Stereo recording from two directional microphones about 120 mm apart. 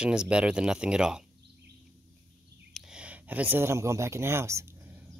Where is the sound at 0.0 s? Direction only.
10° right (ahead or behind).